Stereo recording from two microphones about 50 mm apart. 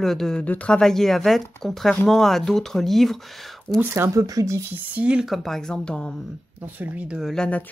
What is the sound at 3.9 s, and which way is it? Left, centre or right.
Speech, right.